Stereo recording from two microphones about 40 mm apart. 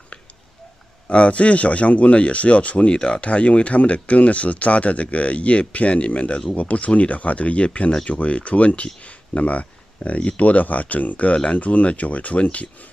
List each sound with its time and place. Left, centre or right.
1.0 s speech: left